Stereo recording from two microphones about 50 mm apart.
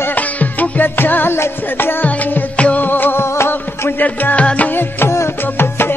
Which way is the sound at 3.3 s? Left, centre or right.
Left.